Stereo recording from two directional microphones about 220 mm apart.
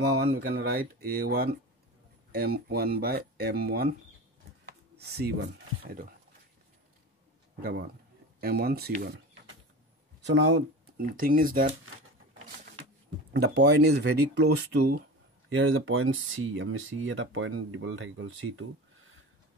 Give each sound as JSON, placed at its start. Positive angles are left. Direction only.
{"t": 0.0, "sound": "speech", "side_deg": -45}
{"t": 4.6, "sound": "a sound", "side_deg": -45}
{"t": 5.8, "sound": "speech", "side_deg": -40}
{"t": 8.4, "sound": "speech", "side_deg": -45}
{"t": 10.2, "sound": "speech", "side_deg": -50}
{"t": 13.7, "sound": "speech", "side_deg": -50}
{"t": 15.5, "sound": "speech", "side_deg": -65}